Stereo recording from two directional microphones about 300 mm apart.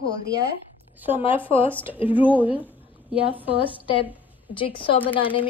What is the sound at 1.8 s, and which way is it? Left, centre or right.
Speech, centre.